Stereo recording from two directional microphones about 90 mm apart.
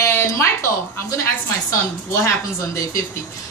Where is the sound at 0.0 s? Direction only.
30° left (ahead or behind).